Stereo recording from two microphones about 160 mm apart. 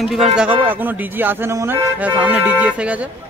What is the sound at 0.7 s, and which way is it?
Music, 10° right (ahead or behind).